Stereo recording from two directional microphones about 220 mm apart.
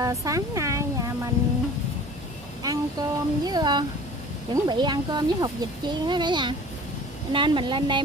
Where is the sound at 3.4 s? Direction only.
20° right (ahead or behind).